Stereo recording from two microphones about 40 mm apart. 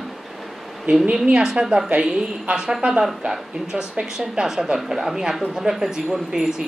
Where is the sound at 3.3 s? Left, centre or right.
Centre.